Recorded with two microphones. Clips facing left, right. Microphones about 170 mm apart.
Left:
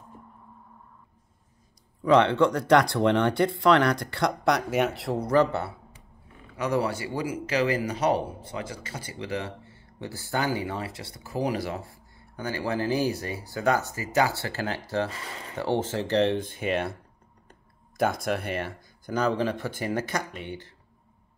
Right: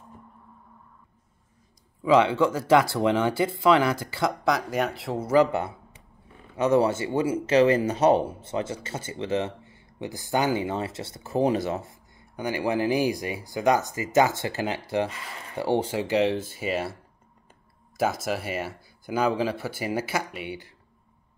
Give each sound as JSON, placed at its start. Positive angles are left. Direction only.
{"t": 2.0, "sound": "speech", "side_deg": -5}
{"t": 6.5, "sound": "speech", "side_deg": -25}